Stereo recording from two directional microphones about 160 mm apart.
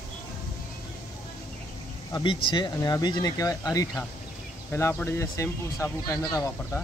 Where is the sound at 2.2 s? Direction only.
30° left (ahead or behind).